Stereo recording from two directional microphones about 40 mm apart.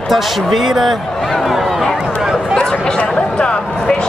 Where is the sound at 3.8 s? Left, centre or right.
Centre.